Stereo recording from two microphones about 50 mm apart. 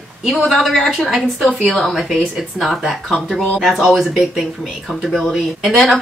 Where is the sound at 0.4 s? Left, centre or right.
Centre.